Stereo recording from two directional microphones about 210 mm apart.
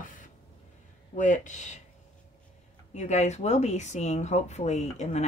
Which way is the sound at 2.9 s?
35° left (ahead or behind).